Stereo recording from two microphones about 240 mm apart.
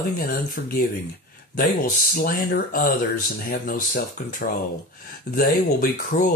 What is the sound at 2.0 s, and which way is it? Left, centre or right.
Speech, left.